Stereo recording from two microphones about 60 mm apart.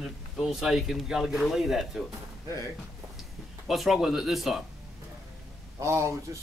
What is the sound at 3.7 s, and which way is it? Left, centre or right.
Speech, centre.